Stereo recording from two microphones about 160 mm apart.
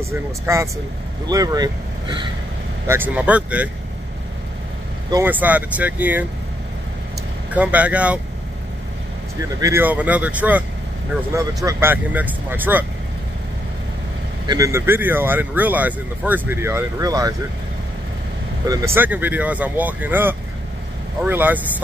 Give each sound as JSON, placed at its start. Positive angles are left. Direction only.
{"t": 0.1, "sound": "speech", "side_deg": -15}
{"t": 2.9, "sound": "speech", "side_deg": -10}
{"t": 5.1, "sound": "speech", "side_deg": -10}
{"t": 7.5, "sound": "speech", "side_deg": -10}
{"t": 9.6, "sound": "speech", "side_deg": -15}
{"t": 14.5, "sound": "speech", "side_deg": -20}
{"t": 18.6, "sound": "speech", "side_deg": -25}
{"t": 18.9, "sound": "speech", "side_deg": -10}